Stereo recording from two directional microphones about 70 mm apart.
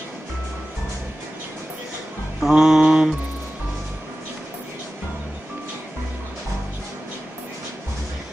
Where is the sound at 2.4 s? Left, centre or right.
Centre.